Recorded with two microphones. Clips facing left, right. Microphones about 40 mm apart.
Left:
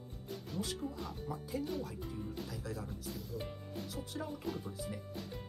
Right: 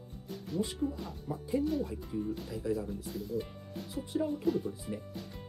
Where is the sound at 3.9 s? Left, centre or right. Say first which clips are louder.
Right 11 dB; centre.